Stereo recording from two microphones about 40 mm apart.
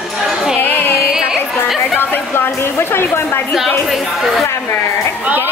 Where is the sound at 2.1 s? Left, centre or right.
Left.